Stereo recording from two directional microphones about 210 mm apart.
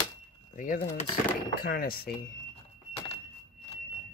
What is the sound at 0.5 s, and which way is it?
Speech, 40° left (ahead or behind).